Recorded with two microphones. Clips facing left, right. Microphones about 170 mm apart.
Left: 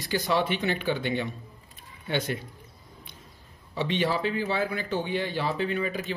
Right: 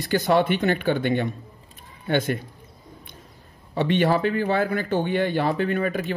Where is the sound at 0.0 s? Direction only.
55° right (ahead or behind).